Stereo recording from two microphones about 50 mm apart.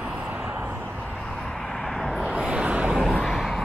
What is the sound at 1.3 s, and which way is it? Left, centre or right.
Vehicle, centre.